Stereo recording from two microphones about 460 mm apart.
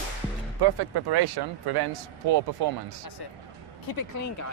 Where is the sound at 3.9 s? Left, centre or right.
Left.